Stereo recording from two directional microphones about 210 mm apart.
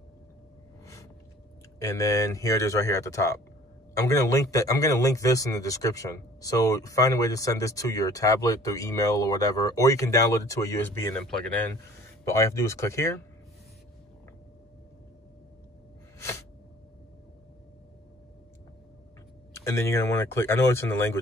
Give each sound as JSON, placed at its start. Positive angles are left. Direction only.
{"t": 1.8, "sound": "speech", "side_deg": 15}
{"t": 16.2, "sound": "a sound", "side_deg": 10}
{"t": 19.5, "sound": "speech", "side_deg": 15}